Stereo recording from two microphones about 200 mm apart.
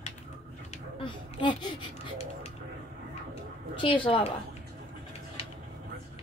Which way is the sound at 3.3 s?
25° left (ahead or behind).